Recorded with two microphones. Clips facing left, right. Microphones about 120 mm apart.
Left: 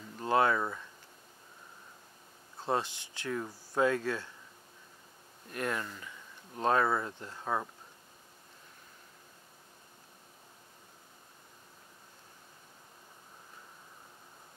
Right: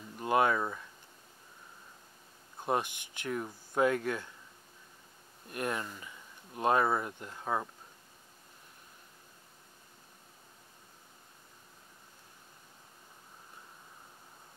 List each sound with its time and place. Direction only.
0.2 s speech: 15° right (ahead or behind)
0.6 s speech: 5° right (ahead or behind)
2.6 s speech: 15° right (ahead or behind)
5.5 s speech: 15° right (ahead or behind)